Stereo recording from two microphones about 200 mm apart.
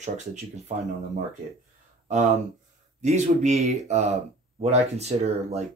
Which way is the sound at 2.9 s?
35° right (ahead or behind).